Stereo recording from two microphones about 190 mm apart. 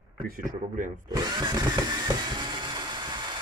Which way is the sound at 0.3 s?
45° right (ahead or behind).